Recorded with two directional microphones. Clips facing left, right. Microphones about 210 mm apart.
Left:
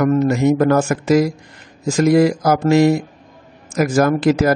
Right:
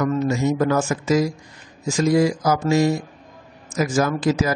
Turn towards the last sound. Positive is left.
turn(degrees=65)  # may be behind; listen again after turning